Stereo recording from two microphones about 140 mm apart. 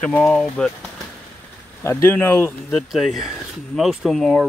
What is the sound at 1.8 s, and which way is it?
Speech, 15° left (ahead or behind).